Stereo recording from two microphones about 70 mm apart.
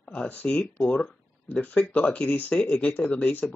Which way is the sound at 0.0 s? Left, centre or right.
Centre.